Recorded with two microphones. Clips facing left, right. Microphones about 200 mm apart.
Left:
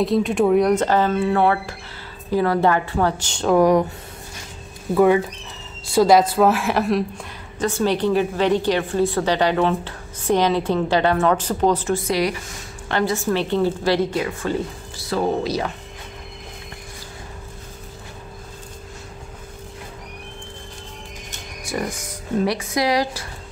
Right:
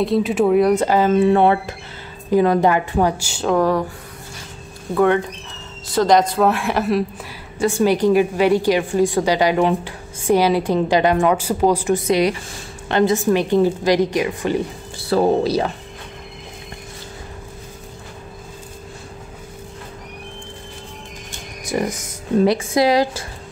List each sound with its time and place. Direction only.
0.0 s a woman's voice: centre (ahead or behind)
3.5 s speech: 15° left (ahead or behind)
4.9 s a woman's voice: 5° left (ahead or behind); by 14.6 s 15° right (ahead or behind)
15.0 s speech: 30° right (ahead or behind)
21.6 s a woman's voice: 20° right (ahead or behind)